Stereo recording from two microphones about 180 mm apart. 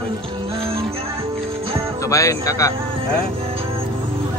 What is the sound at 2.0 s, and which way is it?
Speech, 15° left (ahead or behind).